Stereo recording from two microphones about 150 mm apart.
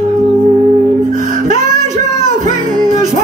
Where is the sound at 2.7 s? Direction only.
55° right (ahead or behind).